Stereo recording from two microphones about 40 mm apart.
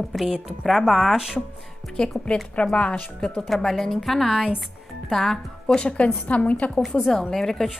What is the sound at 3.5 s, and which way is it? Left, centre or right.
A woman's voice, centre.